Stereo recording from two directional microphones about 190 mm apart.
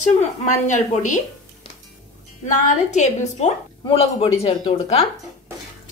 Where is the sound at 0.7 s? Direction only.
40° left (ahead or behind).